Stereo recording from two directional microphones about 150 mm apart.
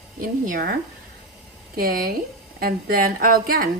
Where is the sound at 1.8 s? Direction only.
80° right.